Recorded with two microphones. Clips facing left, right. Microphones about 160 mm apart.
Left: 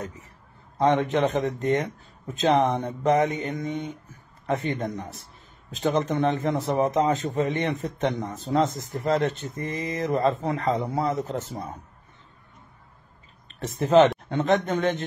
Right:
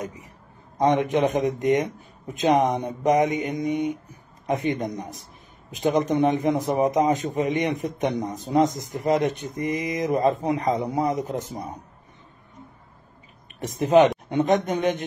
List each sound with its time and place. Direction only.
0.0 s a sound: 15° right (ahead or behind)
0.7 s a man's voice: 15° right (ahead or behind)
13.5 s a man's voice: 15° right (ahead or behind)